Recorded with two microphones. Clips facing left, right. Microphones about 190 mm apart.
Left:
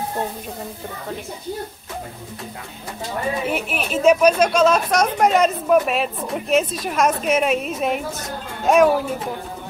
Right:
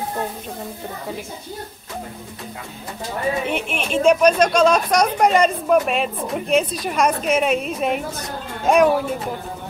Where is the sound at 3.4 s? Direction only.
5° left (ahead or behind).